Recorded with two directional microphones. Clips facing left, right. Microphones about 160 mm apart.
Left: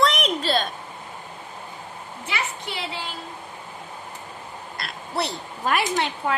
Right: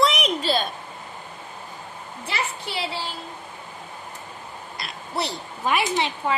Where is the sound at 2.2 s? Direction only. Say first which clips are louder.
Right 1 dB; 35° right (ahead or behind).